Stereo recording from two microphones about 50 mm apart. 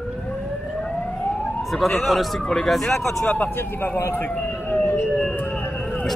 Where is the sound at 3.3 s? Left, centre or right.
Left.